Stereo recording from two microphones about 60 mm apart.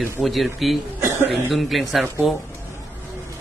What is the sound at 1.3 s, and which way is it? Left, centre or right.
Speech, centre.